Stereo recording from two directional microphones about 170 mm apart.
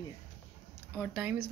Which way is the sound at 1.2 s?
10° right (ahead or behind).